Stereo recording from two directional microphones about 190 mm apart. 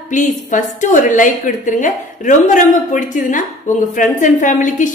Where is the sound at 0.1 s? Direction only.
40° left (ahead or behind).